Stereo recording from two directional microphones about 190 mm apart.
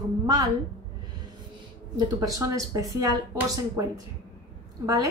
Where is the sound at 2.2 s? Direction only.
20° right (ahead or behind).